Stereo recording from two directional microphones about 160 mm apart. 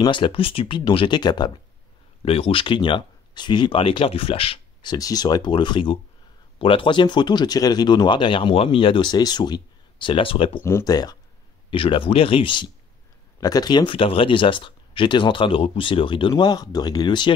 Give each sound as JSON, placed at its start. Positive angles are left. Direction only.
{"t": 0.0, "sound": "speech", "side_deg": 30}
{"t": 2.2, "sound": "speech", "side_deg": 35}
{"t": 4.9, "sound": "speech", "side_deg": 25}
{"t": 10.6, "sound": "speech", "side_deg": 20}
{"t": 11.7, "sound": "speech", "side_deg": 35}